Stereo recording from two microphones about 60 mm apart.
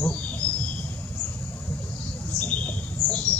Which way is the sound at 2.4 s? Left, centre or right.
Left.